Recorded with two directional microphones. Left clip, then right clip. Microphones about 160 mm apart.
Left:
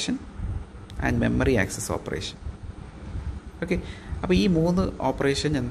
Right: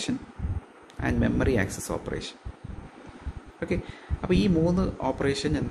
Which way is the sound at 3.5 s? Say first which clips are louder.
Left 2 dB; 15° left (ahead or behind).